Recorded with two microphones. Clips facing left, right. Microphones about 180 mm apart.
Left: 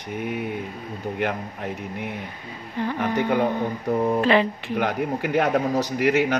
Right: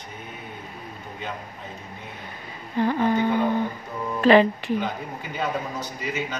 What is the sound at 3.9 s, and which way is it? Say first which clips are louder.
Speech: left 9 dB; 55° left (ahead or behind).